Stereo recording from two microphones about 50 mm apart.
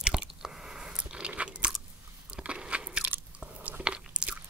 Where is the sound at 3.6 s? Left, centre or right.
Right.